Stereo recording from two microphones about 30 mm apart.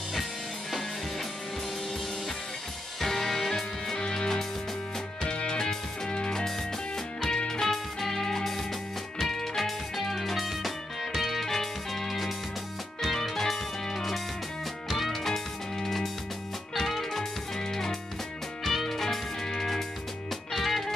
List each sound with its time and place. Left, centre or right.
0.1 s music: centre
3.0 s music: centre
5.2 s music: left
7.2 s music: left
9.3 s music: centre
14.9 s music: centre
15.2 s music: centre
16.7 s music: centre
17.2 s music: centre
18.6 s music: centre